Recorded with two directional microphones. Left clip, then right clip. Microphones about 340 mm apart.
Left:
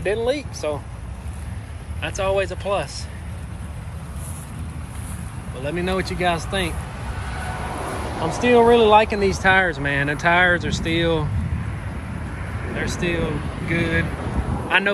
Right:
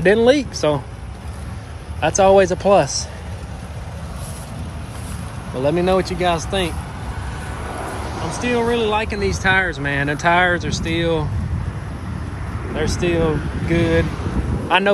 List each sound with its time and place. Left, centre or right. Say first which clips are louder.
0.0 s speech: right 8 dB; right
2.0 s speech: right 9 dB; centre
5.6 s speech: right 7 dB; centre
7.9 s vehicle: left 1 dB; left
8.3 s speech: left 5 dB; centre
12.7 s speech: right 5 dB; centre